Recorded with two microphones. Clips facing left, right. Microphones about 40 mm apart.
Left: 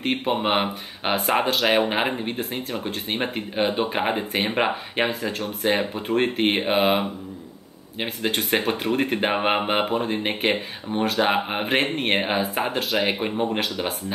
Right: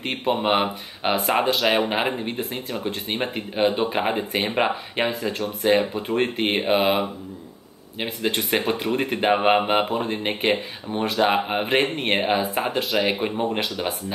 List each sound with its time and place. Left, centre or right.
0.0 s speech: centre